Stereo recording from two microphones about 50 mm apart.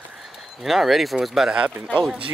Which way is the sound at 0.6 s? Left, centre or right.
Centre.